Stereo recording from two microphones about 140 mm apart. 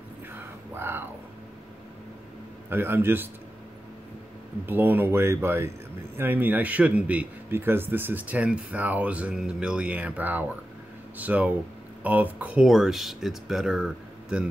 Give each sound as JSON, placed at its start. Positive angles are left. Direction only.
{"t": 0.3, "sound": "a sound", "side_deg": -15}
{"t": 2.7, "sound": "a man's voice", "side_deg": -15}
{"t": 4.6, "sound": "a man's voice", "side_deg": -15}